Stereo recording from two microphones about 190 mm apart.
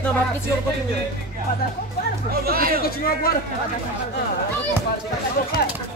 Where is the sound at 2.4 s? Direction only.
50° right (ahead or behind).